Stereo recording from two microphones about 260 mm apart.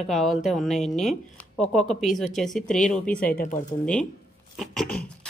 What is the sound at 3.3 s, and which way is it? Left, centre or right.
Speech, left.